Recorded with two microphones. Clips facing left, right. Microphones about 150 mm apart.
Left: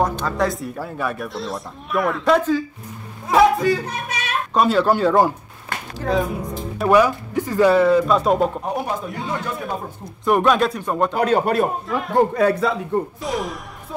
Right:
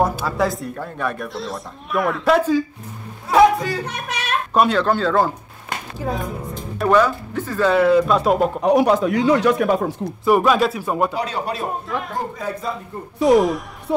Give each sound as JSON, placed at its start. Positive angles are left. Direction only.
{"t": 0.0, "sound": "speech", "side_deg": -5}
{"t": 3.3, "sound": "a sound", "side_deg": 0}
{"t": 4.6, "sound": "speech", "side_deg": 5}
{"t": 5.9, "sound": "speech", "side_deg": 80}
{"t": 6.9, "sound": "speech", "side_deg": 15}
{"t": 7.7, "sound": "speech", "side_deg": 0}
{"t": 8.6, "sound": "speech", "side_deg": -85}
{"t": 10.2, "sound": "speech", "side_deg": -5}
{"t": 11.1, "sound": "speech", "side_deg": 55}
{"t": 11.7, "sound": "speech", "side_deg": 0}
{"t": 12.2, "sound": "a man's voice", "side_deg": 70}
{"t": 13.2, "sound": "speech", "side_deg": 0}
{"t": 13.9, "sound": "music", "side_deg": -70}